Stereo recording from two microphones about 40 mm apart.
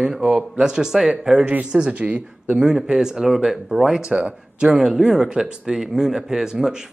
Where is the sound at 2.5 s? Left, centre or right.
Centre.